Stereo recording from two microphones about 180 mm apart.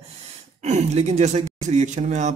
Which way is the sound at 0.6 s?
40° right (ahead or behind).